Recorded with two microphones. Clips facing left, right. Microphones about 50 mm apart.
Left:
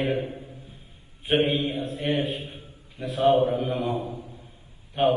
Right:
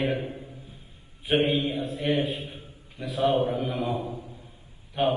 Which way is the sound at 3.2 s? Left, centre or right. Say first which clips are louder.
Left 4 dB; left.